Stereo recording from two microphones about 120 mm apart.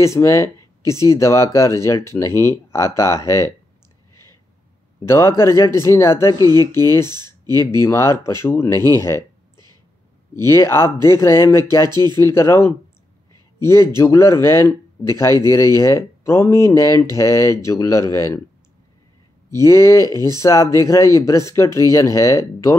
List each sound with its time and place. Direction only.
0.0 s speech: 25° left (ahead or behind)
5.0 s speech: 25° left (ahead or behind)
6.3 s speech: 35° right (ahead or behind)
7.6 s speech: 25° left (ahead or behind)
10.3 s speech: 25° left (ahead or behind)
11.9 s speech: 35° right (ahead or behind)
12.2 s speech: 20° left (ahead or behind)
19.5 s speech: 25° left (ahead or behind)